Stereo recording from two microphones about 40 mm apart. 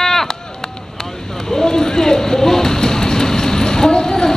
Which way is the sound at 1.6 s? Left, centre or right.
Centre.